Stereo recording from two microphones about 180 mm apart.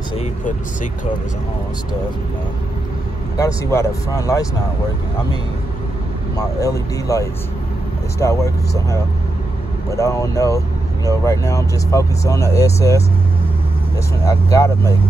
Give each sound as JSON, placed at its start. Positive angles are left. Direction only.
{"t": 3.3, "sound": "speech", "side_deg": 20}
{"t": 6.3, "sound": "speech", "side_deg": 20}
{"t": 14.2, "sound": "speech", "side_deg": 15}